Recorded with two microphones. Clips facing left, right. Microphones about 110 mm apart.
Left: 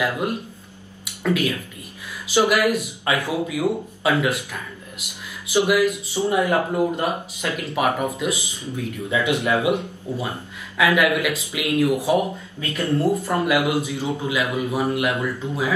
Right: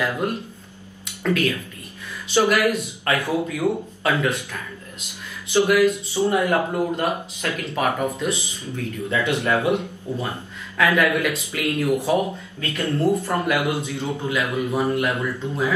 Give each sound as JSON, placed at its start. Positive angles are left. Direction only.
{"t": 0.2, "sound": "speech", "side_deg": 15}